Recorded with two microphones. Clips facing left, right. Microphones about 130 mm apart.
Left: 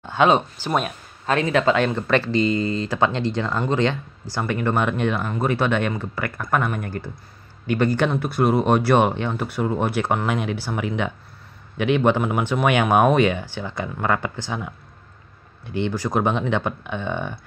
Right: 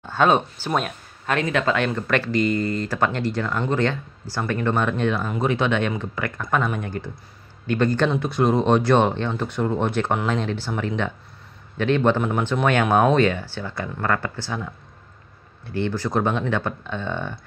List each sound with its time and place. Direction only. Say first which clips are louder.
0.0 s speech: left 1 dB; 15° left (ahead or behind)
1.2 s speech: left 3 dB; 30° left (ahead or behind)